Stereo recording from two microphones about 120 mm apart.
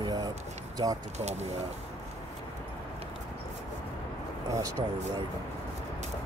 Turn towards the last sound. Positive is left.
turn(degrees=-25)  # may be behind; listen again after turning